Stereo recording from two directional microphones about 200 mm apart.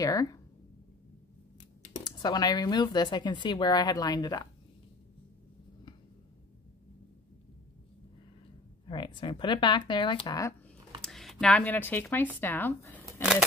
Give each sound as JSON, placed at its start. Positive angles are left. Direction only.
{"t": 0.0, "sound": "speech", "side_deg": 15}
{"t": 2.0, "sound": "speech", "side_deg": 20}
{"t": 8.8, "sound": "speech", "side_deg": 25}
{"t": 11.0, "sound": "speech", "side_deg": 0}
{"t": 13.0, "sound": "shuffling cards", "side_deg": -5}